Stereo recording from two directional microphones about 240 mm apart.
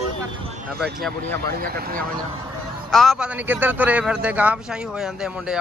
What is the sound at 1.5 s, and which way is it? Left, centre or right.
Speech, right.